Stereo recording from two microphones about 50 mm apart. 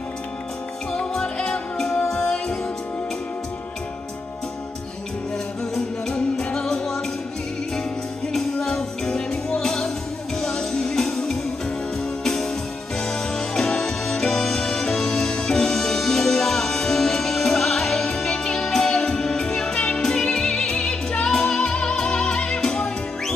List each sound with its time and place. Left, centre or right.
0.9 s music: centre
5.8 s music: centre
8.6 s music: centre
13.0 s music: centre